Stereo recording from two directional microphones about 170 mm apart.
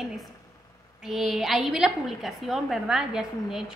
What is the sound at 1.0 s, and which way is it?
A woman's voice, centre (ahead or behind).